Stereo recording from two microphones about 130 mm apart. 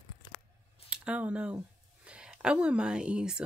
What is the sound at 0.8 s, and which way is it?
A woman's voice, 5° right (ahead or behind).